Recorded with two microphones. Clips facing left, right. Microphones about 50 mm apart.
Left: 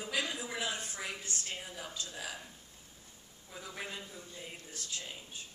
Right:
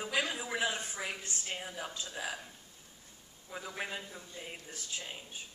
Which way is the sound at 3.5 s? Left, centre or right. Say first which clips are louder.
Right 3 dB; right.